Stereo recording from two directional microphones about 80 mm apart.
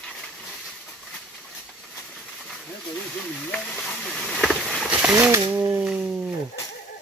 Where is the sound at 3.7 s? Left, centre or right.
Centre.